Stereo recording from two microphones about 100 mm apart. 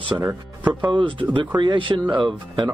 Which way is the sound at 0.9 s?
55° right (ahead or behind).